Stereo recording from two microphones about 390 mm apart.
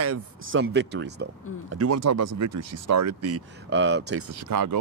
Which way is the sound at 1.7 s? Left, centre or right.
Right.